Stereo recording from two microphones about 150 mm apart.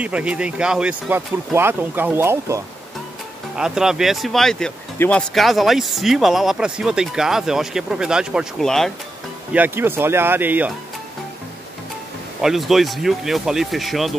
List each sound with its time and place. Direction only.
0.0 s speech: 10° right (ahead or behind)
3.5 s speech: 5° right (ahead or behind)
4.9 s speech: 15° left (ahead or behind)
5.3 s speech: centre (ahead or behind)
9.5 s speech: 15° right (ahead or behind)
12.4 s speech: centre (ahead or behind)